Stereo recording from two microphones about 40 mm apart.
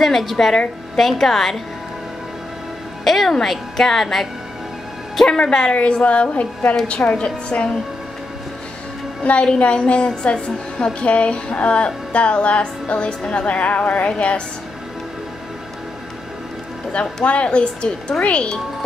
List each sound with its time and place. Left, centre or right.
0.0 s speech: centre
3.0 s a woman's voice: centre; by 7.8 s left
9.2 s a woman's voice: left
14.0 s a woman's voice: left
16.9 s a woman's voice: left